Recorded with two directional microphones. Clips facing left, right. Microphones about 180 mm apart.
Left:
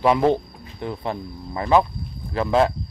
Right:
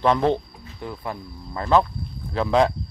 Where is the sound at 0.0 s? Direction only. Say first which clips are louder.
Left 2 dB; 10° left (ahead or behind).